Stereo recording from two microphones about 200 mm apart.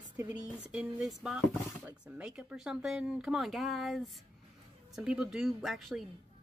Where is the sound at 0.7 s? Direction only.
5° right (ahead or behind).